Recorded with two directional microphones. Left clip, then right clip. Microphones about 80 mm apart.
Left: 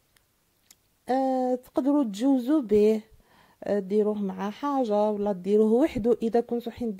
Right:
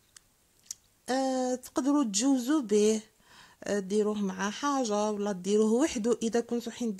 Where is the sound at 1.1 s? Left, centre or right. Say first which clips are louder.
Left 4 dB; left.